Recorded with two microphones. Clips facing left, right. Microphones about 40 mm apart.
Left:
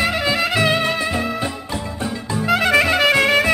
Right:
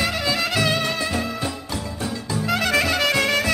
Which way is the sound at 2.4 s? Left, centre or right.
Centre.